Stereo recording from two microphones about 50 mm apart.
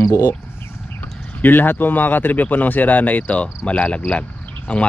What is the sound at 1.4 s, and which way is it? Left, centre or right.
Speech, left.